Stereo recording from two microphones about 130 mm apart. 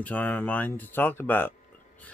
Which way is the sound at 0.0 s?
10° left (ahead or behind).